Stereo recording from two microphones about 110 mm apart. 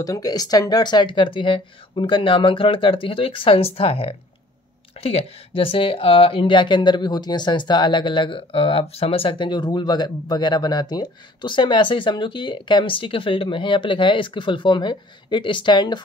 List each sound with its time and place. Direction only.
0.0 s speech: 35° left (ahead or behind)